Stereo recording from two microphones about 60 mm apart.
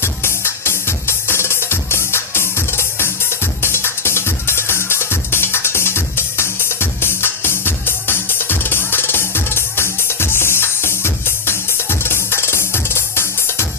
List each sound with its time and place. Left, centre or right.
0.0 s music: left